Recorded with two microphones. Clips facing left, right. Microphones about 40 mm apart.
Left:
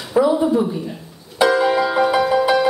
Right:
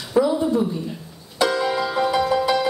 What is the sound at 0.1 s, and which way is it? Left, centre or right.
Speech, left.